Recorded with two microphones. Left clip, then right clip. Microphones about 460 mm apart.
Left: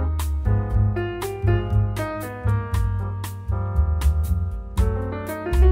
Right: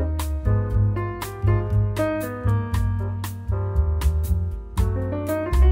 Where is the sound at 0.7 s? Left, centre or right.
Centre.